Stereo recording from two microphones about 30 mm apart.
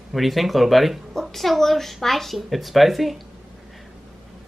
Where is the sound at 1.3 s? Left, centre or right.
Centre.